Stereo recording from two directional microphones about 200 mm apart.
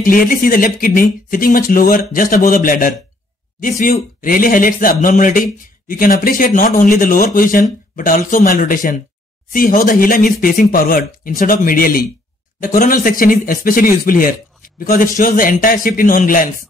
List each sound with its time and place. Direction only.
0.0 s speech: 45° left (ahead or behind)